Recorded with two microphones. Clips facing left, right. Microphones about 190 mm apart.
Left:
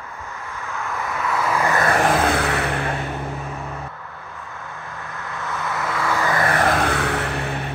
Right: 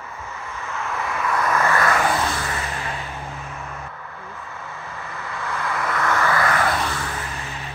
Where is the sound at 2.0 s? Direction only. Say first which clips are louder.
Left 4 dB; 60° left (ahead or behind).